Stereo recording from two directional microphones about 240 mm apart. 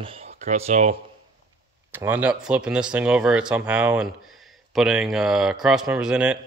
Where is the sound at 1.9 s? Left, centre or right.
Centre.